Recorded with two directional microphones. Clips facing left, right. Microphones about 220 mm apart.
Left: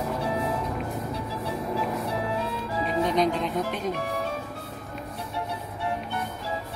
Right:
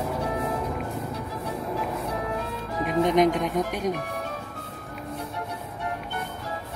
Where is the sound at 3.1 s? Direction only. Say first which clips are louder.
Right 5 dB; 20° right (ahead or behind).